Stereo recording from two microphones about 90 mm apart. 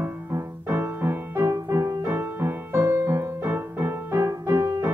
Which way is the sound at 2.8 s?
35° right (ahead or behind).